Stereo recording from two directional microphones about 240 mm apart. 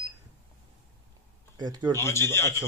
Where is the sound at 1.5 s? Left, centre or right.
Centre.